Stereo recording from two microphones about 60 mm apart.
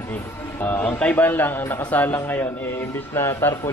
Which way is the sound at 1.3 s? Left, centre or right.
Left.